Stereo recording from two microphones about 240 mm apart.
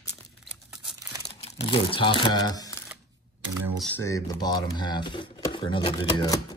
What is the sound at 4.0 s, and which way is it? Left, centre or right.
Speech, centre.